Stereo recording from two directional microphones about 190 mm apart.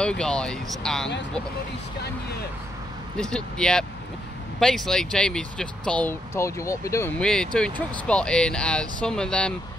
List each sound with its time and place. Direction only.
0.0 s speech: 5° left (ahead or behind)
2.0 s speech: 60° left (ahead or behind)
3.2 s speech: 5° left (ahead or behind)